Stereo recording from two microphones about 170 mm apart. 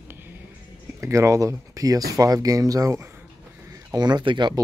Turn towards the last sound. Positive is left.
turn(degrees=-25)  # may be behind; listen again after turning